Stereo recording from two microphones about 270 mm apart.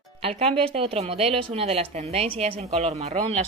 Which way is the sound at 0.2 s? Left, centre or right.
Right.